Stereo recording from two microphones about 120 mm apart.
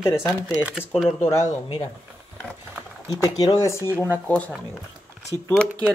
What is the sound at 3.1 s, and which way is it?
Speech, 30° left (ahead or behind).